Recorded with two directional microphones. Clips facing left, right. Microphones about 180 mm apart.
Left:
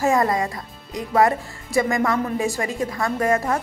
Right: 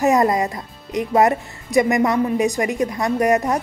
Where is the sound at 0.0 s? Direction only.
20° right (ahead or behind).